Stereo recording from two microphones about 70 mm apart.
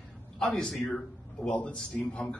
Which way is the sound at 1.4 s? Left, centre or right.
Centre.